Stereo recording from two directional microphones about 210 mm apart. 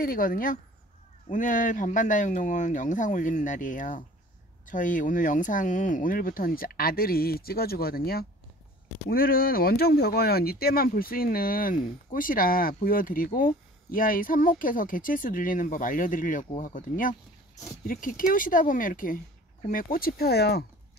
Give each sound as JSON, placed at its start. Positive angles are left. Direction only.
{"t": 0.0, "sound": "speech", "side_deg": 45}